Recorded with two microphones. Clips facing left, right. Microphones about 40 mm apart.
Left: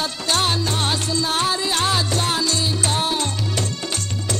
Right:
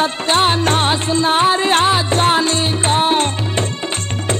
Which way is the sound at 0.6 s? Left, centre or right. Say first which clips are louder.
Right 8 dB; right.